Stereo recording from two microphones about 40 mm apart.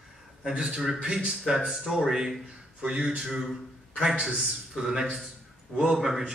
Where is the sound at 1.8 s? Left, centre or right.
Centre.